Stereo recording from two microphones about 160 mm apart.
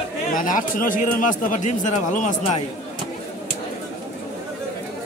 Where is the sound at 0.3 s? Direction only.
55° left (ahead or behind).